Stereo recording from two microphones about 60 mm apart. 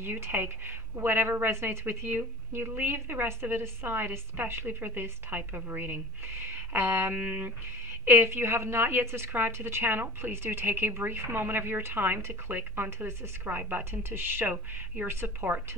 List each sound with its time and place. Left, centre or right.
0.0 s speech: right
8.0 s a woman's voice: right
14.4 s speech: right
15.0 s speech: right